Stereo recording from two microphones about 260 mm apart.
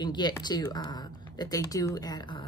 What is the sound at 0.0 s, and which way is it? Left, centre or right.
A woman's voice, centre.